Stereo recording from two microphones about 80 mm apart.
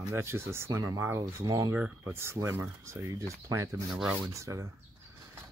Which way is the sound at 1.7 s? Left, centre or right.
Right.